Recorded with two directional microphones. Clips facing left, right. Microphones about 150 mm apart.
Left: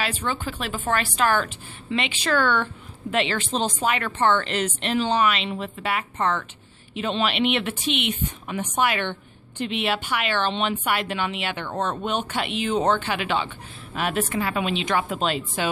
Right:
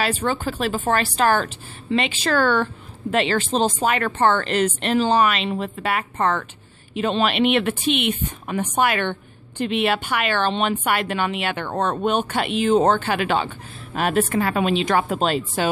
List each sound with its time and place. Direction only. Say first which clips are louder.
0.0 s a woman's voice: right 5 dB; 40° right (ahead or behind)